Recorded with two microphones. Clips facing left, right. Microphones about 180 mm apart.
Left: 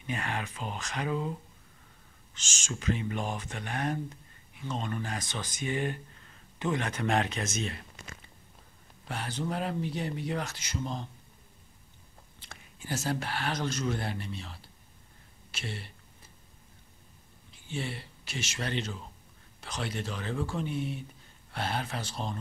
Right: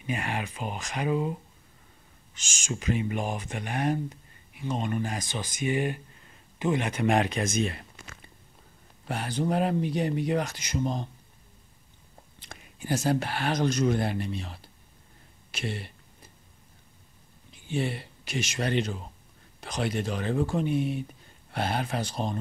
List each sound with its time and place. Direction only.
0.0 s speech: 10° right (ahead or behind)
2.3 s speech: 10° right (ahead or behind)
9.7 s speech: 15° right (ahead or behind)
12.4 s whispering: 15° right (ahead or behind)
13.3 s speech: 15° right (ahead or behind)
15.5 s speech: 15° right (ahead or behind)
17.6 s speech: 15° right (ahead or behind)